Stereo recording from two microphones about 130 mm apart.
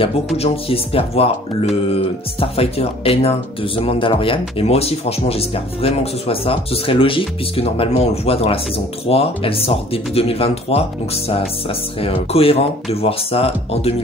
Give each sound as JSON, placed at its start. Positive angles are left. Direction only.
{"t": 0.4, "sound": "speech", "side_deg": 50}